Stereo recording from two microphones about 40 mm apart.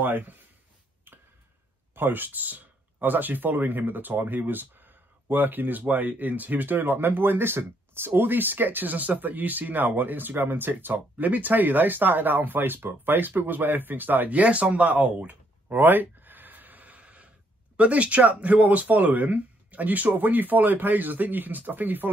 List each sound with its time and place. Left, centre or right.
2.0 s speech: right
14.4 s speech: right
15.1 s a sound: right
17.7 s speech: right